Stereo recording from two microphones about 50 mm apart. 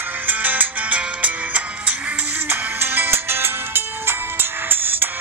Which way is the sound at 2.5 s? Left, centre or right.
Right.